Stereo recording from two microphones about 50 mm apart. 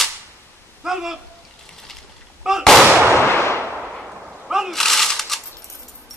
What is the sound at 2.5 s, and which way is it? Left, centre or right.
Fireworks, centre.